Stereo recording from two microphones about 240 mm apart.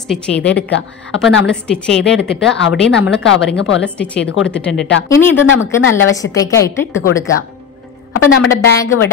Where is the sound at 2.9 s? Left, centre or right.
Left.